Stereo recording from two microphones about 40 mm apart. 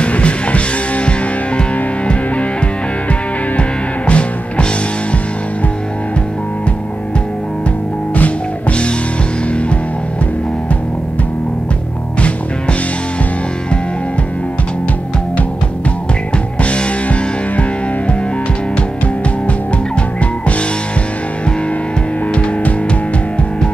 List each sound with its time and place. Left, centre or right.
0.0 s music: left
4.1 s music: left
8.1 s music: left
16.6 s music: left
22.3 s music: left